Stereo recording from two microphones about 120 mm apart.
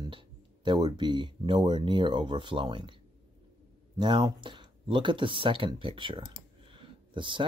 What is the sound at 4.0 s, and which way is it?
Speech, 40° right (ahead or behind).